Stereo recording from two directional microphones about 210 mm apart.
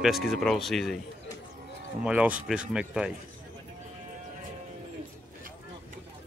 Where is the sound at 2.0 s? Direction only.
5° right (ahead or behind).